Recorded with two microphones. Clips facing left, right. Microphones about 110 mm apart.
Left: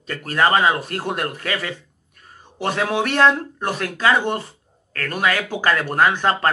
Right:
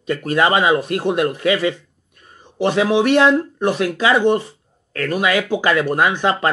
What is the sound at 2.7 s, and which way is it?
Speech, 15° right (ahead or behind).